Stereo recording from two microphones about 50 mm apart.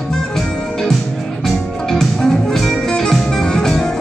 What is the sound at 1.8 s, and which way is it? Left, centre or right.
Music, centre.